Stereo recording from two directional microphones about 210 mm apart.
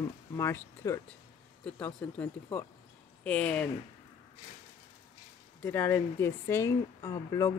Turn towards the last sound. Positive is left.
turn(degrees=15)  # may be behind; listen again after turning